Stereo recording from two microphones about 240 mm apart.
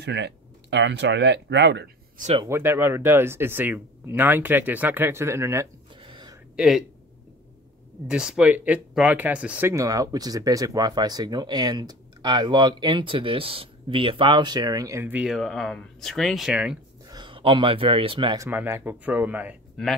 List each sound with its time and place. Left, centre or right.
0.0 s speech: right
2.1 s speech: right
2.4 s speech: centre
6.5 s speech: centre
8.1 s speech: centre
17.1 s speech: centre